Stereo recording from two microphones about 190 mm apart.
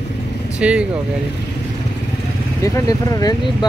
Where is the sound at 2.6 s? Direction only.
15° left (ahead or behind).